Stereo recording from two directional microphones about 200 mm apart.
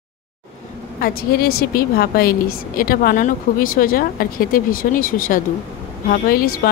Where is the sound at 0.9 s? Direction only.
50° left (ahead or behind).